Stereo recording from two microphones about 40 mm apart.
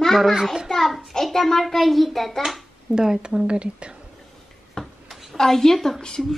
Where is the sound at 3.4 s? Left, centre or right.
Right.